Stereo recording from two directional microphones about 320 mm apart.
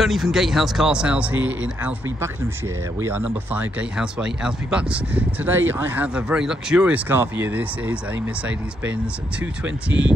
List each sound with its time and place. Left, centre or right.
0.0 s speech: centre
3.0 s speech: centre